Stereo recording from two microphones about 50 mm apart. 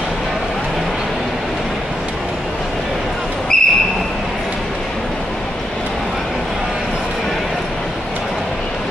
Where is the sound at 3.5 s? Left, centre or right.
Centre.